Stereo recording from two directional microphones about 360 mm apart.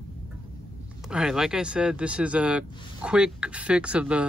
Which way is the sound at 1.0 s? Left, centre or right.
Centre.